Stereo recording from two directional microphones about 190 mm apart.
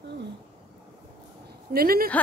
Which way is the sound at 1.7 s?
50° right (ahead or behind).